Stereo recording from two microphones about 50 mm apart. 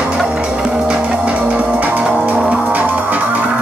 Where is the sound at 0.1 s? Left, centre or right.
Centre.